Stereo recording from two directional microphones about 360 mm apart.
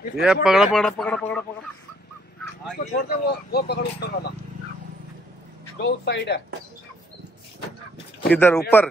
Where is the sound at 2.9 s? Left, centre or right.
Left.